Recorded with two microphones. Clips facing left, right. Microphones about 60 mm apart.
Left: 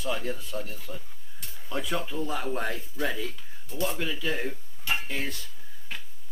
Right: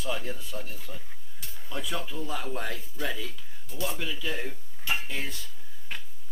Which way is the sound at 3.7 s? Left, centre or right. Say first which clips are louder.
Left 3 dB; centre.